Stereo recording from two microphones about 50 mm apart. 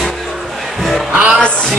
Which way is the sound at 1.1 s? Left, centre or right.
Right.